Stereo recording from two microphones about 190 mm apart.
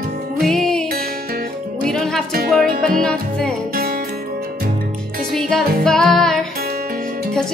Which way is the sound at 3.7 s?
55° right (ahead or behind).